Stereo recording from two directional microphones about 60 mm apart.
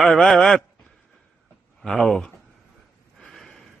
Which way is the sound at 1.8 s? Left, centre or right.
Centre.